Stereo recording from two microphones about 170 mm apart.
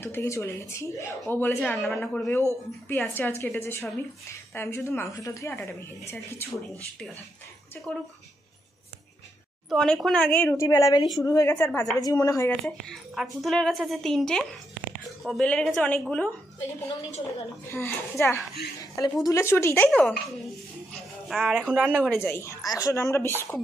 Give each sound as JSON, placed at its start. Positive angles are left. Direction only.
{"t": 0.0, "sound": "a woman's voice", "side_deg": 15}
{"t": 9.7, "sound": "a woman's voice", "side_deg": 0}
{"t": 10.4, "sound": "a woman's voice", "side_deg": 15}
{"t": 12.6, "sound": "a woman's voice", "side_deg": 0}
{"t": 17.6, "sound": "a woman's voice", "side_deg": 15}